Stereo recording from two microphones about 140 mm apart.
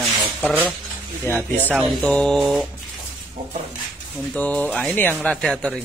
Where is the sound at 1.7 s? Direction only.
5° left (ahead or behind).